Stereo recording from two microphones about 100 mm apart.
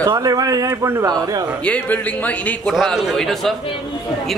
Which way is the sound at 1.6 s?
15° left (ahead or behind).